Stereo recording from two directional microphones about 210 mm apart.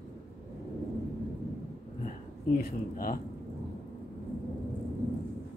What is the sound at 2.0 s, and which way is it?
Speech, 45° left (ahead or behind).